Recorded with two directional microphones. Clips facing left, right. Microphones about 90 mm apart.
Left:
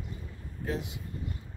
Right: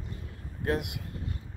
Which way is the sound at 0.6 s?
65° right (ahead or behind).